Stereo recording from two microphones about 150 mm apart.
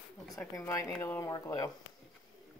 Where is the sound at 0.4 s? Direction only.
20° left (ahead or behind).